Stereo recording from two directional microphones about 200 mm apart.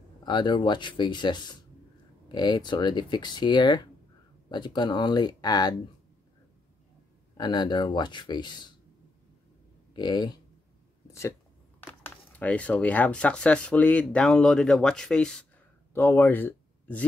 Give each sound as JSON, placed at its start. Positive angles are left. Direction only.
{"t": 0.2, "sound": "speech", "side_deg": 20}
{"t": 7.3, "sound": "speech", "side_deg": 20}
{"t": 9.9, "sound": "speech", "side_deg": 20}
{"t": 11.1, "sound": "a sound", "side_deg": 15}
{"t": 11.8, "sound": "speech", "side_deg": 10}